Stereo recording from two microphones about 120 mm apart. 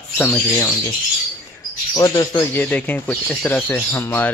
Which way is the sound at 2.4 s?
15° left (ahead or behind).